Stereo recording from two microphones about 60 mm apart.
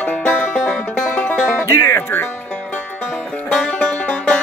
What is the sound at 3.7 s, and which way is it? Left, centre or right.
Music, centre.